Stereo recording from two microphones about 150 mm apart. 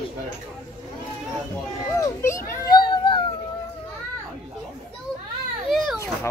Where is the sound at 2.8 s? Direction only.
30° left (ahead or behind).